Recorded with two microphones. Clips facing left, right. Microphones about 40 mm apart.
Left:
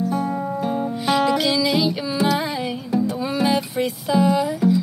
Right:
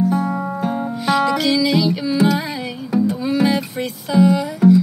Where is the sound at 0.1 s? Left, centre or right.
Centre.